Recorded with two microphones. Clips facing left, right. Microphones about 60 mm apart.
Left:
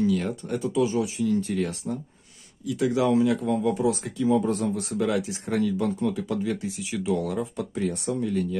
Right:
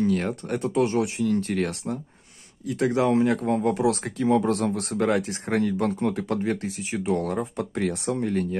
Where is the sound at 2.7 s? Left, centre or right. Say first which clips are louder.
Right 1 dB; right.